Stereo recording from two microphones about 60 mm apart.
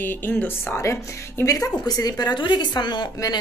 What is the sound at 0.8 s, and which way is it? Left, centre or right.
Speech, left.